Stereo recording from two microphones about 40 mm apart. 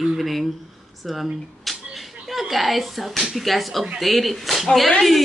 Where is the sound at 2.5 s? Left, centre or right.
Centre.